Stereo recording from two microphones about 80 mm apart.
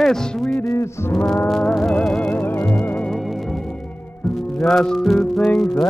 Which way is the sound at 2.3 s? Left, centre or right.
Left.